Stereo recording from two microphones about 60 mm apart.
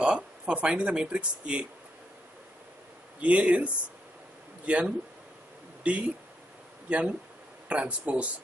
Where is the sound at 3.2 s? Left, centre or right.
Right.